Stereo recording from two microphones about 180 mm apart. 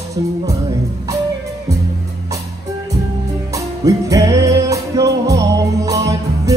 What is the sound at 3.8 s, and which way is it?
Music, 20° right (ahead or behind).